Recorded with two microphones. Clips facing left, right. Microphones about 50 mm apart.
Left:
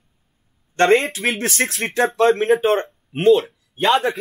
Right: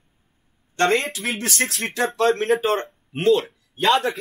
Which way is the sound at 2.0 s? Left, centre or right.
Centre.